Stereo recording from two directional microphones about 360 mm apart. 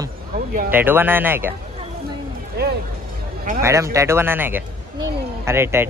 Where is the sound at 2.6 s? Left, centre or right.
Right.